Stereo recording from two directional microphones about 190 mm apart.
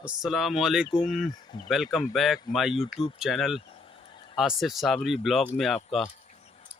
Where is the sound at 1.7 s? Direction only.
Centre (ahead or behind).